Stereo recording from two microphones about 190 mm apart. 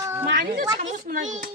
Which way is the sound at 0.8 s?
45° right (ahead or behind).